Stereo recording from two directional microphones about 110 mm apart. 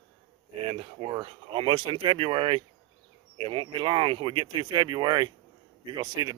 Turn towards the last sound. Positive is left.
turn(degrees=-40)  # may be behind; listen again after turning